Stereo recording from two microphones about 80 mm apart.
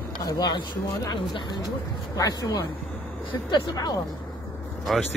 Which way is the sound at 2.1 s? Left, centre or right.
Left.